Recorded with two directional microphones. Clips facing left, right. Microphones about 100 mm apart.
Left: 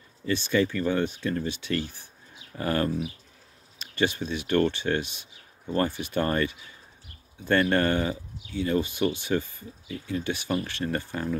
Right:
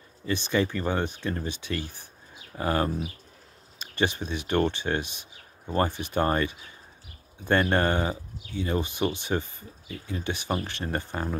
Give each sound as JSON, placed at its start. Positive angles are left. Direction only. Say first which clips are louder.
{"t": 0.3, "sound": "speech", "louder": "left 1 dB", "side_deg": -20}
{"t": 4.0, "sound": "speech", "louder": "left 1 dB", "side_deg": -20}